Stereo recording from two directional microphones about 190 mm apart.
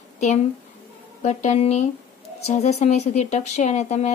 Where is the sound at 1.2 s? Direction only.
35° left (ahead or behind).